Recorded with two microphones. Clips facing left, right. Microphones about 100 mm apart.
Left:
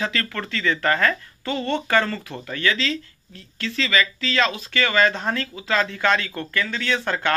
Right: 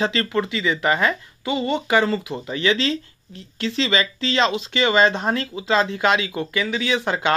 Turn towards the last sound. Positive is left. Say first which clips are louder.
# right 2 dB
turn(degrees=-15)  # may be behind; listen again after turning